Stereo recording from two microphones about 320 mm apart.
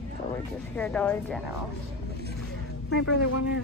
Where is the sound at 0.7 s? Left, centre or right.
Centre.